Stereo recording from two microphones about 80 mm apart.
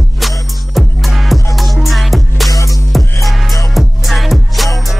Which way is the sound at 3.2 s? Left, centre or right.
Centre.